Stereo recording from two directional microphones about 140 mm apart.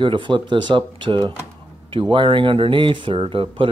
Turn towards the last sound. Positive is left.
turn(degrees=-40)  # may be behind; listen again after turning